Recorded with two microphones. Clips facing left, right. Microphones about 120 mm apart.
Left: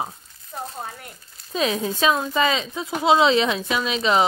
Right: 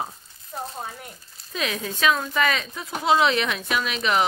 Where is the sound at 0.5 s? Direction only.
5° right (ahead or behind).